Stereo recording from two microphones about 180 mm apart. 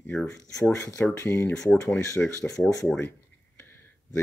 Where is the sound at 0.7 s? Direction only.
15° left (ahead or behind).